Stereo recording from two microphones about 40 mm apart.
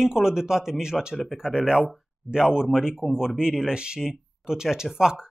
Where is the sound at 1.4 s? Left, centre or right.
Right.